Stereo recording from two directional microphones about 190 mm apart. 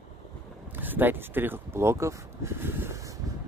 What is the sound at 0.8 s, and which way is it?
Speech, 10° right (ahead or behind).